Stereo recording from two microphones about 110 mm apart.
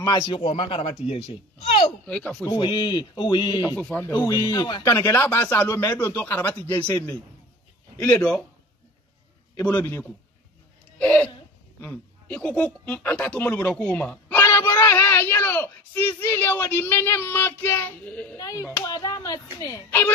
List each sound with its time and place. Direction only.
0.5 s speech: 60° left (ahead or behind); by 2.0 s 85° left
2.0 s speech: 10° left (ahead or behind)
2.4 s speech: 40° left (ahead or behind)
3.7 s speech: 15° left (ahead or behind)
4.3 s speech: 35° left (ahead or behind)
4.8 s speech: 25° left (ahead or behind)
9.7 s speech: 20° left (ahead or behind)
11.0 s a sound: 10° left (ahead or behind)
11.8 s speech: 15° left (ahead or behind)
14.4 s speech: 25° left (ahead or behind)
18.4 s speech: 30° left (ahead or behind)